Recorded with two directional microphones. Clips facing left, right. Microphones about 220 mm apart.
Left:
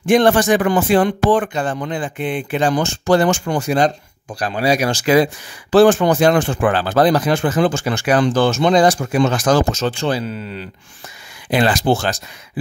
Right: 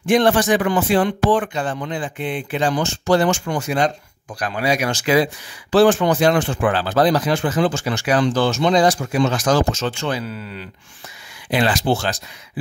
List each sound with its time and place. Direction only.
0.0 s speech: 50° left (ahead or behind); by 10.7 s 25° left (ahead or behind)
11.5 s speech: 45° left (ahead or behind)